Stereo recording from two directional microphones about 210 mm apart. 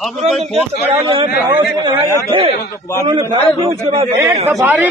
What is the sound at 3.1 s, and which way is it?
A man's voice, 20° right (ahead or behind).